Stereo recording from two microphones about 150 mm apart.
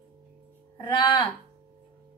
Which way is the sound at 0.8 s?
30° left (ahead or behind).